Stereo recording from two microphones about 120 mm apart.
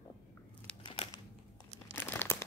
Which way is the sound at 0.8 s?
50° left (ahead or behind).